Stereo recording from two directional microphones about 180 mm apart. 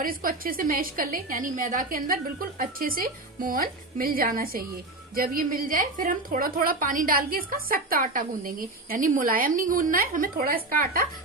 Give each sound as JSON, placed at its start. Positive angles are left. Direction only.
{"t": 0.0, "sound": "a woman's voice", "side_deg": -50}